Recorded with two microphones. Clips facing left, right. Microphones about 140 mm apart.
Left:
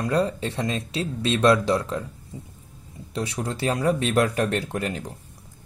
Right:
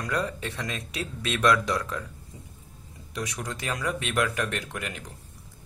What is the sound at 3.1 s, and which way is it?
Speech, 30° left (ahead or behind).